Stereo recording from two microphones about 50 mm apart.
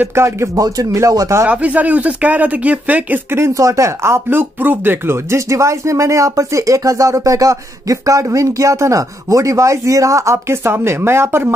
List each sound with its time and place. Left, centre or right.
0.1 s speech: right
1.5 s speech: right
3.3 s speech: right
10.5 s speech: right